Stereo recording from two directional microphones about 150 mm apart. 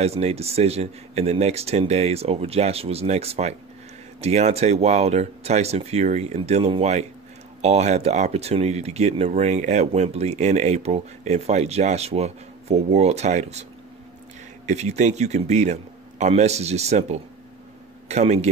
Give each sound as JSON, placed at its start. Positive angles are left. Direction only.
{"t": 0.0, "sound": "speech", "side_deg": -45}
{"t": 14.7, "sound": "a man's voice", "side_deg": -50}